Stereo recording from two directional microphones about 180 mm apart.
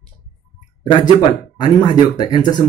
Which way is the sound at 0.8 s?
25° left (ahead or behind).